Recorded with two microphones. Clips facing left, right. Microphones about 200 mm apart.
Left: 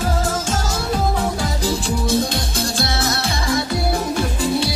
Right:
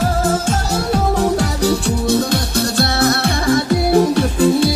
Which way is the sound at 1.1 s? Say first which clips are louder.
Right 6 dB; 70° right (ahead or behind).